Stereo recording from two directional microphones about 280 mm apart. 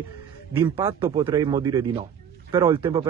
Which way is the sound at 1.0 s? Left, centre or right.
Centre.